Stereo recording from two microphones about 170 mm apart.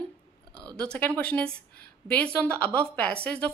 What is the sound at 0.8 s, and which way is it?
Speech, 10° left (ahead or behind).